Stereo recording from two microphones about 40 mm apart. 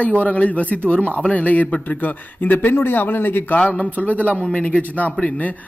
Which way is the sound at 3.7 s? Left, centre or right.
Left.